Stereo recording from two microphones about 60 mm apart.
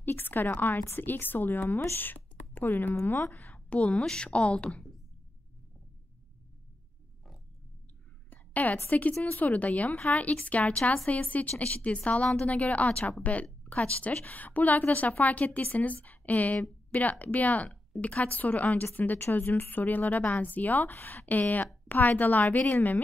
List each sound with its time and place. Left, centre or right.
0.0 s a woman's voice: left
1.7 s speech: left
2.0 s a sound: left
2.9 s speech: left
3.8 s a woman's voice: centre
8.3 s a sound: left
9.2 s a woman's voice: left